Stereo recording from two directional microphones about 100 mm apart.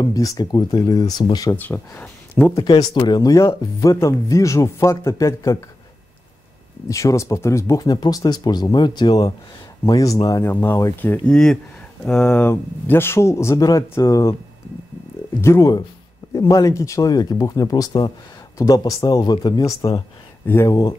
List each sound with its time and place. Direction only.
0.0 s speech: 35° left (ahead or behind)
1.5 s speech: 15° left (ahead or behind)
2.5 s speech: 50° left (ahead or behind); by 5.6 s 30° left (ahead or behind)
6.9 s speech: 30° left (ahead or behind)
10.4 s speech: 20° left (ahead or behind)
11.2 s speech: 5° left (ahead or behind); by 14.3 s 30° left (ahead or behind)
15.4 s speech: 25° left (ahead or behind); by 20.9 s 45° left (ahead or behind)